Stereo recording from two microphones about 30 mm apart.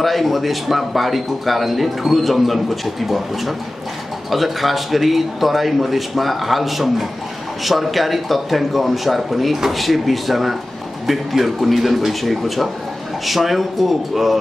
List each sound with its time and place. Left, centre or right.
0.0 s a man's voice: centre